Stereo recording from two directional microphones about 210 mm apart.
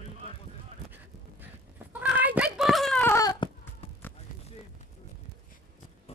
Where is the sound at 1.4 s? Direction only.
10° right (ahead or behind); by 3.9 s 20° left (ahead or behind).